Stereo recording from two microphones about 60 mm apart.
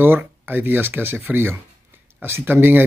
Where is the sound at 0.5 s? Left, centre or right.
Right.